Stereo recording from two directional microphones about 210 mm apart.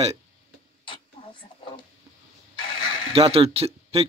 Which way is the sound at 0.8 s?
25° left (ahead or behind).